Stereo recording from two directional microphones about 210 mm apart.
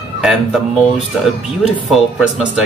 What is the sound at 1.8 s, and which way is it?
Speech, centre (ahead or behind).